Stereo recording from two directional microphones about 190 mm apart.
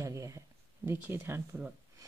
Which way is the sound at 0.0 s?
15° right (ahead or behind).